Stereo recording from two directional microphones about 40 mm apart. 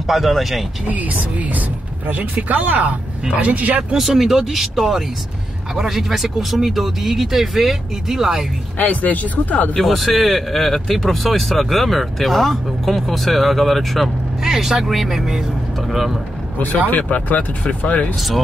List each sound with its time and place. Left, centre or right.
0.0 s speech: centre
0.8 s speech: right
3.9 s speech: centre
8.7 s speech: left
9.8 s speech: centre
14.4 s speech: centre
16.5 s speech: left
18.1 s speech: centre